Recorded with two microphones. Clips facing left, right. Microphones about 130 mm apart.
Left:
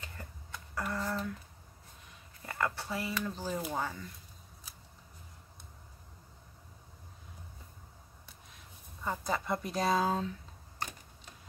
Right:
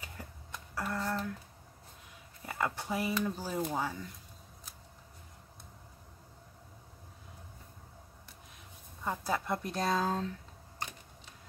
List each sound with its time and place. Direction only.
0.7 s speech: centre (ahead or behind)
2.4 s speech: 10° right (ahead or behind)
9.0 s speech: centre (ahead or behind)